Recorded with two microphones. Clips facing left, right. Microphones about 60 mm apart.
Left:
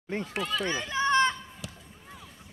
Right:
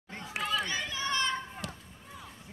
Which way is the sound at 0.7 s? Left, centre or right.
Left.